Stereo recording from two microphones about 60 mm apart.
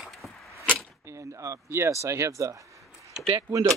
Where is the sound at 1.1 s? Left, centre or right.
Right.